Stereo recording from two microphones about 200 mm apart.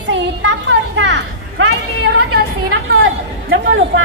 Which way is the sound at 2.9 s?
85° right.